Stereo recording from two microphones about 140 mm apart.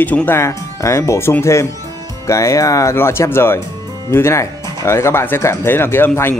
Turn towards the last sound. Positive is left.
turn(degrees=15)  # may be behind; listen again after turning